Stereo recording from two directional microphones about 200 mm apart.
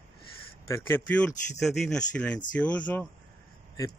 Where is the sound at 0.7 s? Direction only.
10° left (ahead or behind).